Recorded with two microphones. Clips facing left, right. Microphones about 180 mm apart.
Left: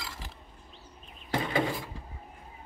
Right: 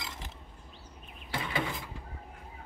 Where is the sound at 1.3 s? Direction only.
45° left (ahead or behind).